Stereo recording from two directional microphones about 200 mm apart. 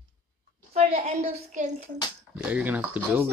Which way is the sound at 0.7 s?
30° right (ahead or behind).